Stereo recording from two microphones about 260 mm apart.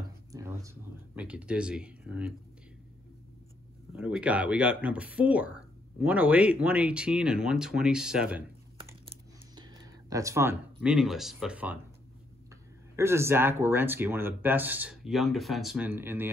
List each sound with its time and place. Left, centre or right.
0.3 s speech: centre
3.9 s speech: centre
8.7 s a sound: centre
9.6 s speech: centre
12.9 s speech: centre